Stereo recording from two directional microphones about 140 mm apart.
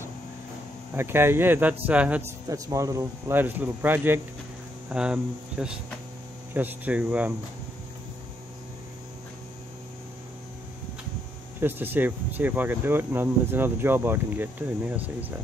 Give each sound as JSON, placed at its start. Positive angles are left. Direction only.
{"t": 0.9, "sound": "speech", "side_deg": -15}
{"t": 2.4, "sound": "speech", "side_deg": -25}
{"t": 11.6, "sound": "speech", "side_deg": -15}